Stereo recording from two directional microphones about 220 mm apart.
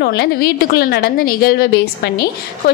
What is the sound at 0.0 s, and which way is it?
A woman's voice, 45° left (ahead or behind).